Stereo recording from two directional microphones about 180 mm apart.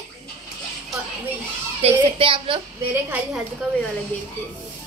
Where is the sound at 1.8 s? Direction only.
35° right (ahead or behind).